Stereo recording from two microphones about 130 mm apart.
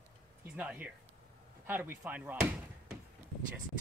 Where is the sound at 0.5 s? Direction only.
10° right (ahead or behind).